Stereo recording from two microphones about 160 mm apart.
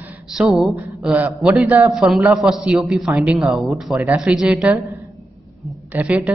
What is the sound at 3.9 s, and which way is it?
Speech, 10° right (ahead or behind).